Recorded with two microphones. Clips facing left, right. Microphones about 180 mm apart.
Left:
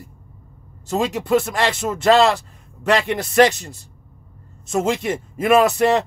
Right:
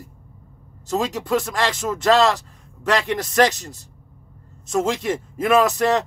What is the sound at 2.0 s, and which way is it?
Speech, 10° left (ahead or behind).